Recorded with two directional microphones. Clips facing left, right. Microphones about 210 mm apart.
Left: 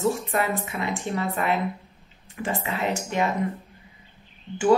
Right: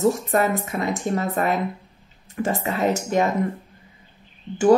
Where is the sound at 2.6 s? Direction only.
40° right (ahead or behind).